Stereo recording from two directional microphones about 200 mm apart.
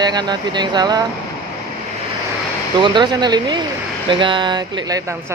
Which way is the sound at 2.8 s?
20° right (ahead or behind).